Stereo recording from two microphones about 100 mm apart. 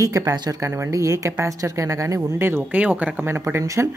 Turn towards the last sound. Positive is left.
turn(degrees=-30)  # may be behind; listen again after turning